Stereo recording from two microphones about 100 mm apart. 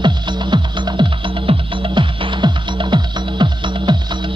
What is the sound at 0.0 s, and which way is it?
Music, 50° right (ahead or behind).